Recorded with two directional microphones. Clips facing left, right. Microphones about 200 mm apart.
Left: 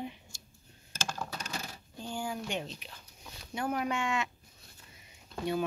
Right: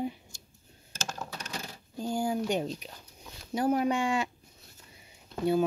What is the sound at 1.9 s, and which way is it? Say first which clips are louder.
Speech: right 7 dB; 40° right (ahead or behind).